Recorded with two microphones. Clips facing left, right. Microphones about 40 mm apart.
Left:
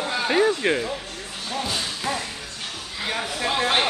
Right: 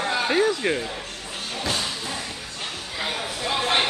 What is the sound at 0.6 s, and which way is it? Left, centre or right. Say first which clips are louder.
Speech: left 2 dB; centre.